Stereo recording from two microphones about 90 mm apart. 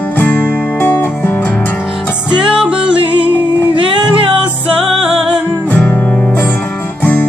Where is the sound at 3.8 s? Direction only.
70° right (ahead or behind).